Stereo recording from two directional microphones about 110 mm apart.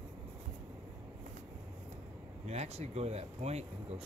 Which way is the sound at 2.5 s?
75° right (ahead or behind).